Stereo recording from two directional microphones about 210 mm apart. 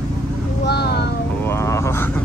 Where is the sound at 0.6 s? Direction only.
50° left (ahead or behind).